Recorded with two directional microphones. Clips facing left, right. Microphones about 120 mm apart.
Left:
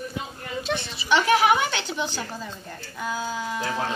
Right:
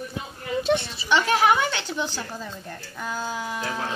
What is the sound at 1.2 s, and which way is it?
A woman's voice, 20° left (ahead or behind).